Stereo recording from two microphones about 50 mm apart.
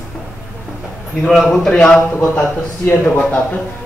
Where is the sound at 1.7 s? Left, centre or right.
Centre.